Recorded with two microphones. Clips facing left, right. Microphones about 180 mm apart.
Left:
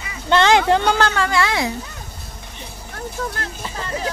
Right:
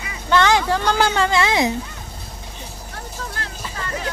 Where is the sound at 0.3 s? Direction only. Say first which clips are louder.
Left 2 dB; 20° left (ahead or behind).